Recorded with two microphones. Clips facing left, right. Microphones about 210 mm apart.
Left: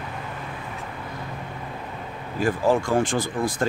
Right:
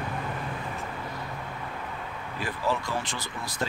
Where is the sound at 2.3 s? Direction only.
45° left (ahead or behind).